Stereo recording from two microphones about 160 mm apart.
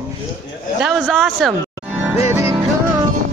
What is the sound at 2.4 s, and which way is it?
Music, 15° right (ahead or behind).